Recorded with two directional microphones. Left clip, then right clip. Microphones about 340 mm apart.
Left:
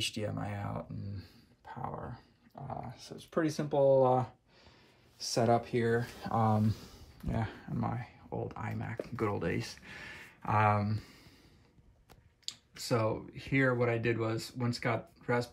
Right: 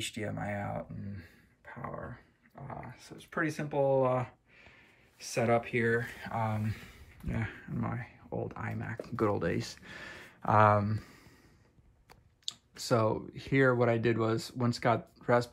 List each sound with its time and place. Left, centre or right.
0.0 s speech: centre
12.9 s speech: centre